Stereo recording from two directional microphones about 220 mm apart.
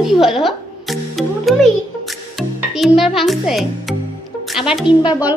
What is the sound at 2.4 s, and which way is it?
A child's voice, centre (ahead or behind).